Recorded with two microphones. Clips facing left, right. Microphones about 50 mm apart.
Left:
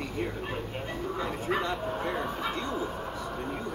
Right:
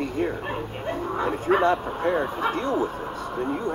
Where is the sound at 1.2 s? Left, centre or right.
Right.